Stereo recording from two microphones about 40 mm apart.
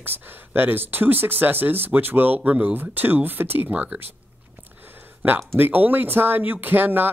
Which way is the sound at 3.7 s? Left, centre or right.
Right.